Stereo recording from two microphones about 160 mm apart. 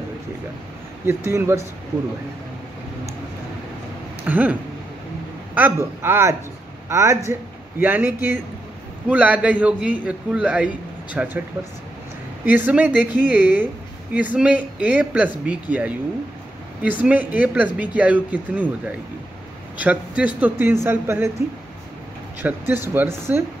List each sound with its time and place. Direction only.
1.0 s speech: 15° right (ahead or behind)
4.2 s speech: 10° right (ahead or behind)
12.4 s speech: 10° right (ahead or behind)
22.4 s speech: 15° right (ahead or behind)